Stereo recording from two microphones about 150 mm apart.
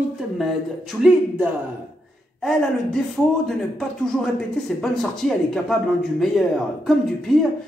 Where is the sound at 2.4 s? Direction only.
Centre (ahead or behind).